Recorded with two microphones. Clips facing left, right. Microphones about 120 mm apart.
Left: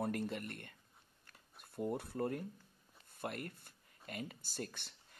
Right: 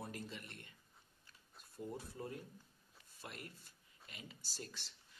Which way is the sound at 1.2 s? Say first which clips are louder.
Left 4 dB; 60° left (ahead or behind).